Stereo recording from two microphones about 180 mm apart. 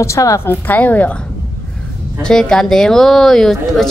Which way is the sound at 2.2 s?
5° left (ahead or behind).